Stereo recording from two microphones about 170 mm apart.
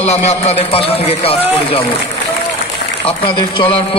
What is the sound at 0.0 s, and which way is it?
Mantra, 40° left (ahead or behind).